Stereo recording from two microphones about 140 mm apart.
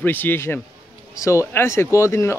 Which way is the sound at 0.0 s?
15° left (ahead or behind).